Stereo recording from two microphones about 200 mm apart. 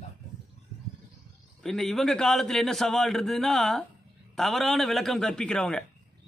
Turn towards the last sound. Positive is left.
turn(degrees=5)  # may be behind; listen again after turning